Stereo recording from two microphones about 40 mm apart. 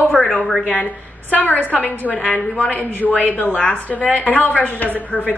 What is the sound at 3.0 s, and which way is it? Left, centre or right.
Speech, left.